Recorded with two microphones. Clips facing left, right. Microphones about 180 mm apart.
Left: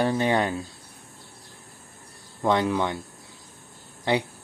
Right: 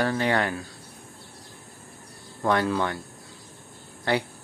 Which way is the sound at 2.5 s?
15° left (ahead or behind).